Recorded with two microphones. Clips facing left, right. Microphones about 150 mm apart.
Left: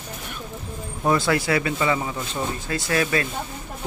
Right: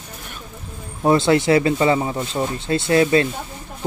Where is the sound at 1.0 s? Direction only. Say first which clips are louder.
Right 6 dB; 25° right (ahead or behind).